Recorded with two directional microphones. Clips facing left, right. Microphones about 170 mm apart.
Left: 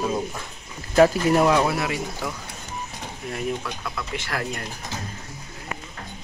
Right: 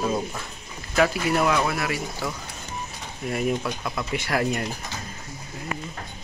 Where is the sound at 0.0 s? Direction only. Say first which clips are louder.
Even; centre (ahead or behind).